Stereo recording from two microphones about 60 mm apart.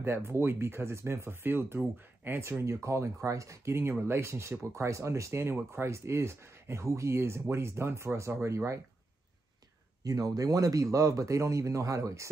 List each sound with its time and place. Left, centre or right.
0.0 s speech: right
2.6 s speech: right
10.0 s speech: right